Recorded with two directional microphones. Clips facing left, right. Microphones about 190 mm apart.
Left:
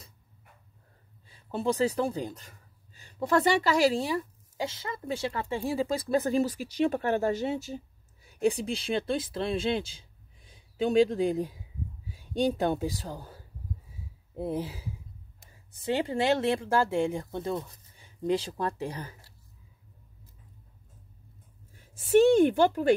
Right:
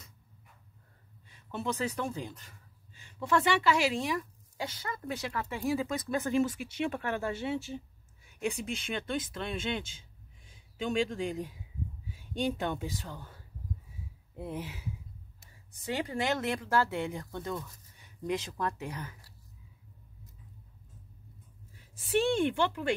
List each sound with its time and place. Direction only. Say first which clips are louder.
1.2 s speech: left 6 dB; 30° left (ahead or behind)
21.7 s a woman's voice: left 8 dB; 45° left (ahead or behind)